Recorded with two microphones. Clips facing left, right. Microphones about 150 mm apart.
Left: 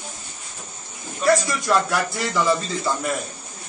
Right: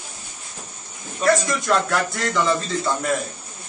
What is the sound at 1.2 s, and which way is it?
Speech, centre (ahead or behind).